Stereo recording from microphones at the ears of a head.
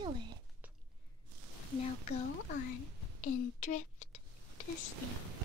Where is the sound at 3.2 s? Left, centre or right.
Left.